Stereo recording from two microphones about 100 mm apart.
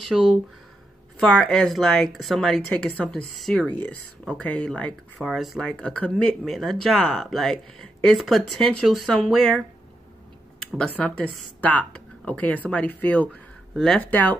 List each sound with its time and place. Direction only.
0.1 s speech: 10° right (ahead or behind)
1.2 s a woman's voice: 10° left (ahead or behind)
6.4 s a woman's voice: centre (ahead or behind)
10.8 s speech: 10° left (ahead or behind)